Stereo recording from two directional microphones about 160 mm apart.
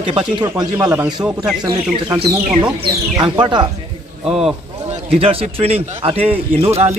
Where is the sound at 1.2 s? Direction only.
5° right (ahead or behind).